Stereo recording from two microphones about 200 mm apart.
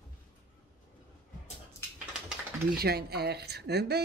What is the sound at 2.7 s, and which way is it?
Speech, 50° right (ahead or behind).